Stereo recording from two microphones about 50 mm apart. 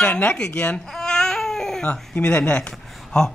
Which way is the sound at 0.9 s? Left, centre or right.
Centre.